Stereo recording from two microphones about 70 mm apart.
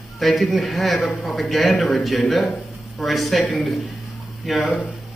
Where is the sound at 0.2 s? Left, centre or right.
Centre.